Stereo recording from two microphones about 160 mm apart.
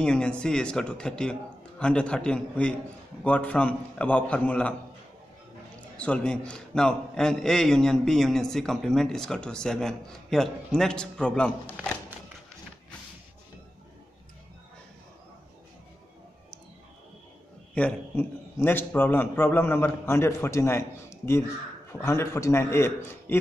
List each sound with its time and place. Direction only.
0.0 s a man's voice: 5° left (ahead or behind)
5.9 s a man's voice: 5° left (ahead or behind)
17.7 s a man's voice: 10° left (ahead or behind)
22.0 s a man's voice: 15° left (ahead or behind)